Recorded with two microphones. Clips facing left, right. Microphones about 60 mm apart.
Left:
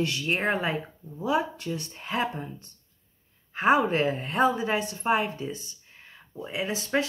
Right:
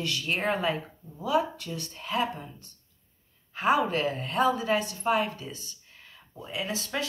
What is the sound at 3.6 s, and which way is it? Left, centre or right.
Speech, left.